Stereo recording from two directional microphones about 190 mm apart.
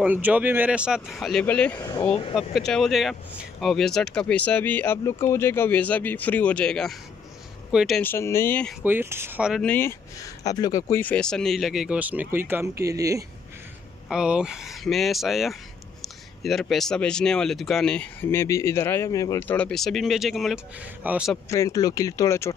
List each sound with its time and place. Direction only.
0.0 s speech: 10° right (ahead or behind); by 1.8 s 5° left (ahead or behind)
1.8 s speech: 20° left (ahead or behind)
2.5 s speech: centre (ahead or behind)
8.0 s speech: 10° left (ahead or behind)
8.8 s speech: 10° right (ahead or behind); by 9.9 s 10° left (ahead or behind)
10.4 s speech: 20° left (ahead or behind)
10.9 s speech: 10° left (ahead or behind); by 13.2 s 15° right (ahead or behind)
14.0 s speech: 5° right (ahead or behind); by 19.5 s 20° left (ahead or behind)
19.5 s speech: 5° left (ahead or behind)
21.5 s speech: 15° left (ahead or behind)